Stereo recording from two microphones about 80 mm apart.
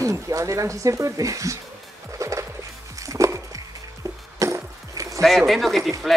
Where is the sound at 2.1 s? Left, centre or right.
Right.